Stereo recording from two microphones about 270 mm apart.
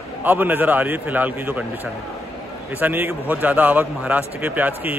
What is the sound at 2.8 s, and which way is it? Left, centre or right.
A man's voice, centre.